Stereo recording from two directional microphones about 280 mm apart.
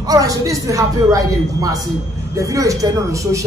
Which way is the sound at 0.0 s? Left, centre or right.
Centre.